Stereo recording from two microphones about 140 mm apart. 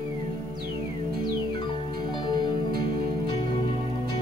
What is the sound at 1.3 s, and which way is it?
Music, 35° left (ahead or behind).